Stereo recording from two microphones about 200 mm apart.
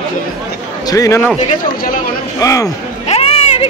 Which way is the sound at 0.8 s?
15° left (ahead or behind).